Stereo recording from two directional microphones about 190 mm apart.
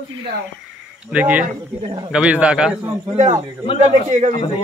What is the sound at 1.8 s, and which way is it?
Speech, 25° right (ahead or behind).